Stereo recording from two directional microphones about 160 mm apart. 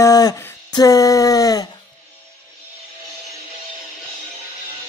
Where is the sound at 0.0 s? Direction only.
20° left (ahead or behind).